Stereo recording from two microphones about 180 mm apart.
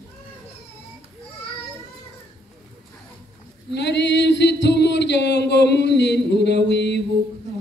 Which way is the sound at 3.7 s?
70° left (ahead or behind).